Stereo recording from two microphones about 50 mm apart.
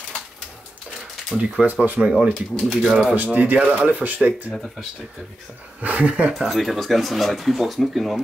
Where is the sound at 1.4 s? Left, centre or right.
Centre.